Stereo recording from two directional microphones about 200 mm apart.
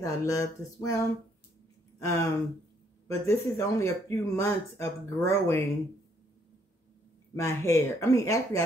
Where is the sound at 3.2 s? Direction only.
15° left (ahead or behind).